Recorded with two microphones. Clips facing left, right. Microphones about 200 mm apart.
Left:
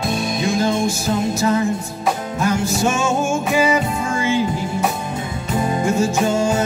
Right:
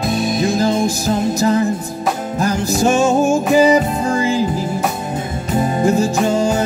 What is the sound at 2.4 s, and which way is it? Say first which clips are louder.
Music: right 3 dB; 35° right (ahead or behind).